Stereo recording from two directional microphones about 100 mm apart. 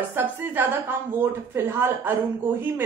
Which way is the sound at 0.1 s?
20° right (ahead or behind).